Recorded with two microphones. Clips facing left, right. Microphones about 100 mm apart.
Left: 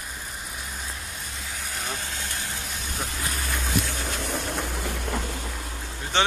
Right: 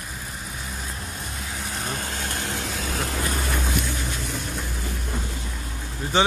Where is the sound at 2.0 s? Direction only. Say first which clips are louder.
Right 4 dB; 65° right (ahead or behind); by 3.2 s 90° right.